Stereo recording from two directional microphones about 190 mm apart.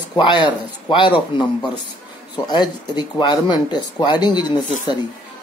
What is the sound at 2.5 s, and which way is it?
Speech, 20° left (ahead or behind).